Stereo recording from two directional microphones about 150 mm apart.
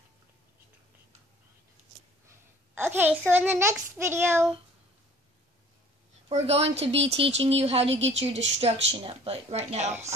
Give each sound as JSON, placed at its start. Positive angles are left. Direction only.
{"t": 2.2, "sound": "a sound", "side_deg": -15}
{"t": 4.0, "sound": "child singing", "side_deg": -15}
{"t": 6.2, "sound": "speech", "side_deg": -45}